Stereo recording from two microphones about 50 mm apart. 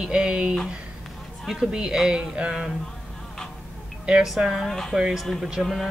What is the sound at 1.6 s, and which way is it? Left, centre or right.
Speech, centre.